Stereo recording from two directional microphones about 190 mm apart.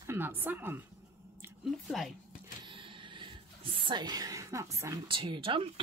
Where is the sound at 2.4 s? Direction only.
25° right (ahead or behind).